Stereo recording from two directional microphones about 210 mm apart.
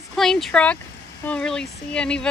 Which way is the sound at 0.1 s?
Centre (ahead or behind).